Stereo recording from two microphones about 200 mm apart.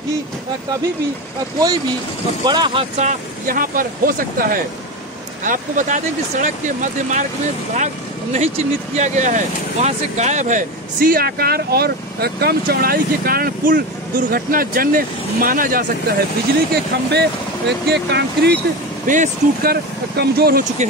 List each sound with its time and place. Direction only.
2.4 s speech: 20° right (ahead or behind); by 15.8 s 45° right (ahead or behind)
16.7 s speech: 55° right (ahead or behind)
19.0 s speech: 40° right (ahead or behind)